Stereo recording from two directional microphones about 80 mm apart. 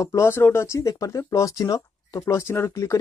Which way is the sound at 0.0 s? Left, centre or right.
Left.